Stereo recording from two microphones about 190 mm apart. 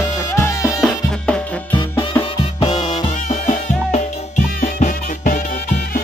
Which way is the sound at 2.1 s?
20° left (ahead or behind).